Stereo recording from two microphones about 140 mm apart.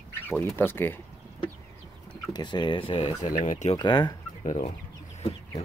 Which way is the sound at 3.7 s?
35° left (ahead or behind).